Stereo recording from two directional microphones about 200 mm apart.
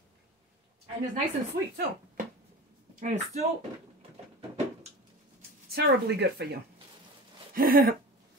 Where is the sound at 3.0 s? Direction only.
40° right (ahead or behind).